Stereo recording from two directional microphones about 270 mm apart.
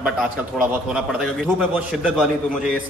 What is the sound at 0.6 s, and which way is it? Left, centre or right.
A man's voice, centre.